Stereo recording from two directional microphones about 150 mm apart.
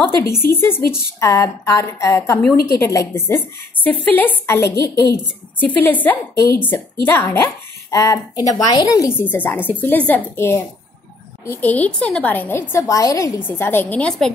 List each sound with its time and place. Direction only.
0.4 s a woman's voice: 15° left (ahead or behind)